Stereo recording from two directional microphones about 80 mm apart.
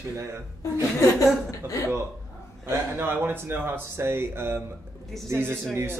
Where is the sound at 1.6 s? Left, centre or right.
Right.